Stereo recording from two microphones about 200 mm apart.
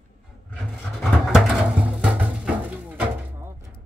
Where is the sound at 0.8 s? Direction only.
Centre (ahead or behind).